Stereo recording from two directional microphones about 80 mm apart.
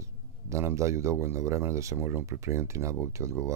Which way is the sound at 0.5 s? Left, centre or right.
Right.